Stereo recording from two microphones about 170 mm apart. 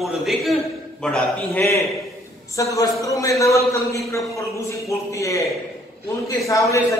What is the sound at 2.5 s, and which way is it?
A man's voice, 20° left (ahead or behind).